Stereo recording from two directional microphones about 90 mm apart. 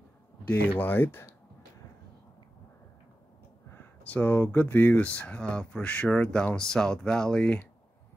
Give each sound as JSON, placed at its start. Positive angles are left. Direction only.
{"t": 0.5, "sound": "speech", "side_deg": 20}
{"t": 3.7, "sound": "speech", "side_deg": 20}